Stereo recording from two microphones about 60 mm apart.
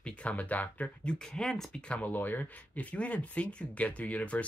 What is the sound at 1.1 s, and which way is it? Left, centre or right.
Speech, centre.